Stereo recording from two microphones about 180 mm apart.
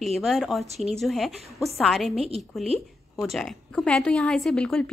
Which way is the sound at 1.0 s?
Centre (ahead or behind).